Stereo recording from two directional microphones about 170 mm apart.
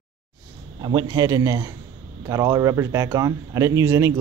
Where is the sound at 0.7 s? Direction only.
25° right (ahead or behind).